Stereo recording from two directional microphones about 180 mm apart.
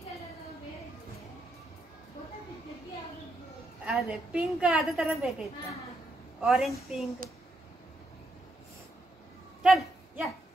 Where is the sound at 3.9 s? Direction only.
5° right (ahead or behind).